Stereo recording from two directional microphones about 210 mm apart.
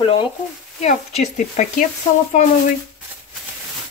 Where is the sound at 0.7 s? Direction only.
30° left (ahead or behind).